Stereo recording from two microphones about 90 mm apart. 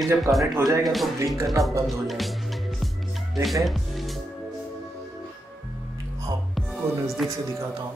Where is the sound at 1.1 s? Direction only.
35° right (ahead or behind).